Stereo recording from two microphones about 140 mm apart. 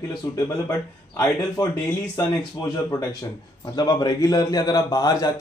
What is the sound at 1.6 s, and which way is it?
Speech, 30° left (ahead or behind).